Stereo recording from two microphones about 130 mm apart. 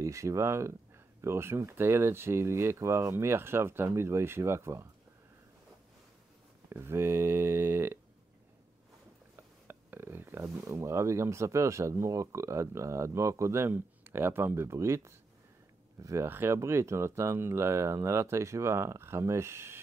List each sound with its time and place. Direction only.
0.0 s speech: 25° right (ahead or behind)
6.7 s speech: 20° right (ahead or behind)
9.7 s speech: 15° right (ahead or behind)